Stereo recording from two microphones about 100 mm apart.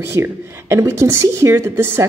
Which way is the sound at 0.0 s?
25° right (ahead or behind).